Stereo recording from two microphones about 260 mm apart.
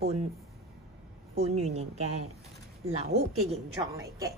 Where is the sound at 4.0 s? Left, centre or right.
Centre.